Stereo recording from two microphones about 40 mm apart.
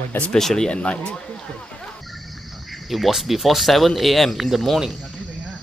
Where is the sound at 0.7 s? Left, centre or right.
Left.